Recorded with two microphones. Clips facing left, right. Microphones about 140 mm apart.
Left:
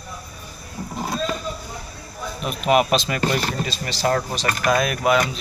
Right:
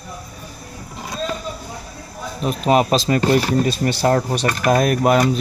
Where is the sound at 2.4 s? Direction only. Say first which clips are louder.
Right 2 dB; 35° right (ahead or behind).